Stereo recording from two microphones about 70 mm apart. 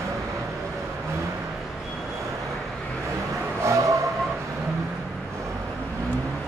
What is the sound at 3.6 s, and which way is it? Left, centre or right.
Vehicle, right.